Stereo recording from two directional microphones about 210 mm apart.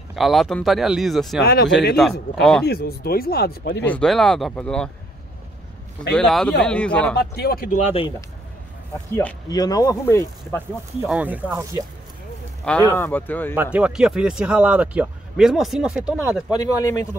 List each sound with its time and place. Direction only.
0.1 s speech: centre (ahead or behind)
1.4 s speech: 50° left (ahead or behind)
2.0 s speech: centre (ahead or behind)
2.6 s speech: 50° left (ahead or behind)
3.8 s speech: 5° left (ahead or behind)
6.1 s speech: 5° left (ahead or behind)
7.2 s speech: 50° left (ahead or behind); by 8.1 s 30° left (ahead or behind)
9.1 s speech: 15° left (ahead or behind)
11.1 s speech: 5° right (ahead or behind)
12.6 s speech: 10° left (ahead or behind)
13.6 s speech: 5° right (ahead or behind)
16.5 s speech: 15° left (ahead or behind)